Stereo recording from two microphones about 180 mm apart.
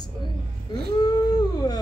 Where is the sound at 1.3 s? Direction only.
20° left (ahead or behind).